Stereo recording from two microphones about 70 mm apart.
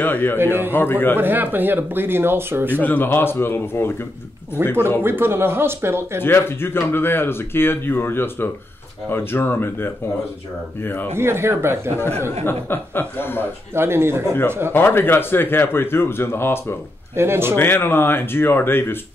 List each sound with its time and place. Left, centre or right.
0.0 s a man's voice: left
0.4 s speech: right
0.7 s speech: left
1.1 s speech: right
2.8 s speech: left
5.0 s speech: right
6.2 s a man's voice: left
11.1 s speech: right
12.0 s speech: left
13.7 s speech: right
14.7 s speech: left
17.1 s speech: right
17.6 s speech: left